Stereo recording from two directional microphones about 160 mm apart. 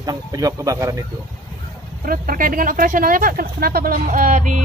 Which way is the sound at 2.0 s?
65° right (ahead or behind).